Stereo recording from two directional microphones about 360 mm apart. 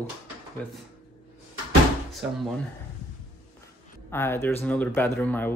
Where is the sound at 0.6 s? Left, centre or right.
Centre.